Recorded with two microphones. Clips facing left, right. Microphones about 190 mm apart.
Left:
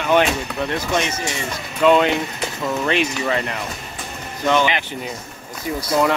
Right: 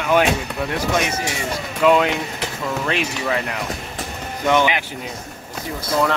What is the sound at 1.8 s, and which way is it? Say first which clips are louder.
Speech: left 1 dB; 5° right (ahead or behind).